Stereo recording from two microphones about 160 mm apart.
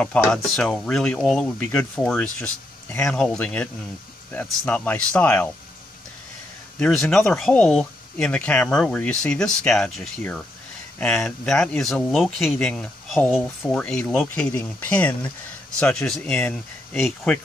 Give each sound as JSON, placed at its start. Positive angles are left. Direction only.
{"t": 0.0, "sound": "speech", "side_deg": 5}
{"t": 6.8, "sound": "speech", "side_deg": 5}